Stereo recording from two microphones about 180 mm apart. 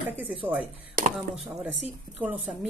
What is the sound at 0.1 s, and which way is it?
Speech, 10° right (ahead or behind).